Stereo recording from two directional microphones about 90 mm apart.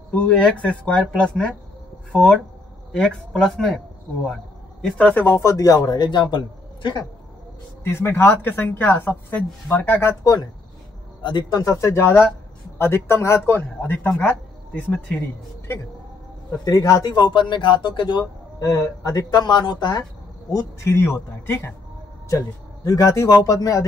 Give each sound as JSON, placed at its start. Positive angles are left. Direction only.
{"t": 0.1, "sound": "speech", "side_deg": 15}
{"t": 2.9, "sound": "speech", "side_deg": 10}
{"t": 4.8, "sound": "speech", "side_deg": 10}
{"t": 5.1, "sound": "a woman's voice", "side_deg": 20}
{"t": 5.4, "sound": "speech", "side_deg": 35}
{"t": 7.8, "sound": "a woman's voice", "side_deg": 25}
{"t": 10.2, "sound": "speech", "side_deg": 45}
{"t": 11.8, "sound": "a woman's voice", "side_deg": 25}
{"t": 16.6, "sound": "speech", "side_deg": 40}
{"t": 17.1, "sound": "speech", "side_deg": 60}
{"t": 18.2, "sound": "speech", "side_deg": 40}
{"t": 20.0, "sound": "speech", "side_deg": 35}
{"t": 22.8, "sound": "speech", "side_deg": 35}